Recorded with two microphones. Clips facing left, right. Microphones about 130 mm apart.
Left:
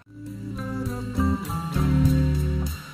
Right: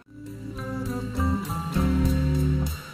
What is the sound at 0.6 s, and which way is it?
Music, centre (ahead or behind).